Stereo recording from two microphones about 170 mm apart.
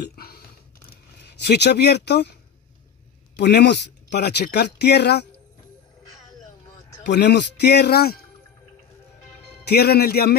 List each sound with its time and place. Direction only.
0.0 s a sound: 65° left (ahead or behind)
1.2 s speech: 80° left
3.3 s speech: 80° left
7.1 s speech: 85° left; by 8.2 s 70° left (ahead or behind)
9.7 s speech: 70° left (ahead or behind)